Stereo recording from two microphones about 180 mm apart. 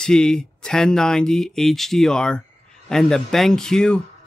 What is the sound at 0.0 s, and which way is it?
Speech, 5° left (ahead or behind).